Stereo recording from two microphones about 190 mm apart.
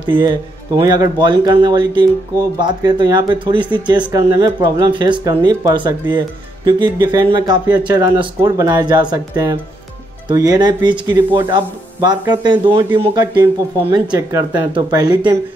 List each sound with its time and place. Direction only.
0.2 s speech: 20° right (ahead or behind)